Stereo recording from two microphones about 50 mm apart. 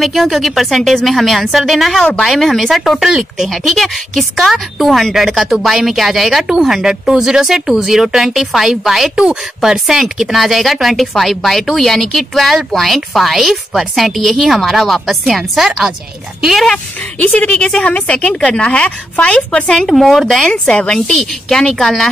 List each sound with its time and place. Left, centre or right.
0.0 s speech: centre
3.1 s speech: centre
3.4 s speech: centre
17.4 s a woman's voice: left
19.9 s speech: centre
20.5 s a woman's voice: centre
21.2 s a woman's voice: centre